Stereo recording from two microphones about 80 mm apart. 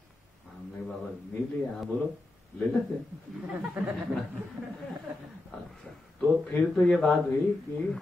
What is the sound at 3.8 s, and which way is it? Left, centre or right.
Speech, centre.